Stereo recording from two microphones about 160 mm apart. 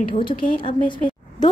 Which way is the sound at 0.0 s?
30° left (ahead or behind).